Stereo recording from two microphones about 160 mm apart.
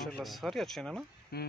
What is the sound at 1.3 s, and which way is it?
Speech, 75° left (ahead or behind).